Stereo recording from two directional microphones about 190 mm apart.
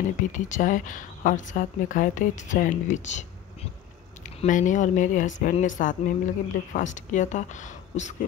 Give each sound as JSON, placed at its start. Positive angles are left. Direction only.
{"t": 0.3, "sound": "speech", "side_deg": 40}
{"t": 4.4, "sound": "a woman's voice", "side_deg": 40}